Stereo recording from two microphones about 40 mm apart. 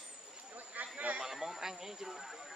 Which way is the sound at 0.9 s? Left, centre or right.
Right.